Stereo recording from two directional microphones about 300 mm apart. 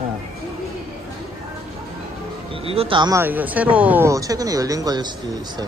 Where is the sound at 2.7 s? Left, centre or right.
Centre.